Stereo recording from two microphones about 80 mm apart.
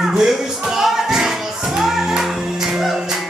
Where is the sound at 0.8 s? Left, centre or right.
Centre.